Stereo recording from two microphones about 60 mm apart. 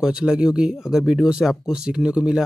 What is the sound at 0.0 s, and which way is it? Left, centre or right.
Speech, centre.